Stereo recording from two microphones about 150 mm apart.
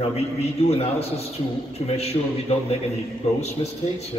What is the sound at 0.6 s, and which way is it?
A man's voice, 40° left (ahead or behind).